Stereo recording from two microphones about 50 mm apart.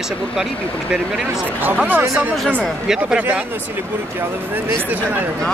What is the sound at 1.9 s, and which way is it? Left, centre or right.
Speech, right.